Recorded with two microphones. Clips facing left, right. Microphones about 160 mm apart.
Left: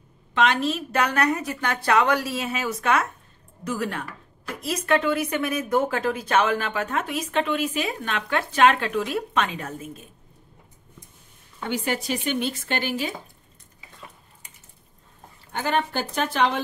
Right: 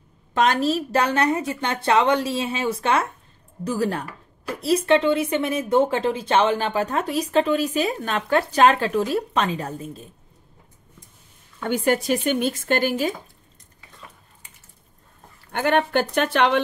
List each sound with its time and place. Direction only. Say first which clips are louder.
0.3 s a woman's voice: right 2 dB; 40° right (ahead or behind)
11.7 s speech: right 6 dB; 50° right (ahead or behind)
15.5 s a woman's voice: right 5 dB; 65° right (ahead or behind)